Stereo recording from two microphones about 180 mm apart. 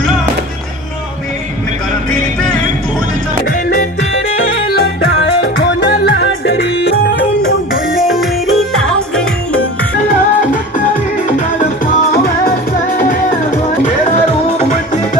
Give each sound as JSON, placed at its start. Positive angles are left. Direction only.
{"t": 4.6, "sound": "music", "side_deg": 65}
{"t": 7.9, "sound": "music", "side_deg": 0}
{"t": 11.3, "sound": "music", "side_deg": 50}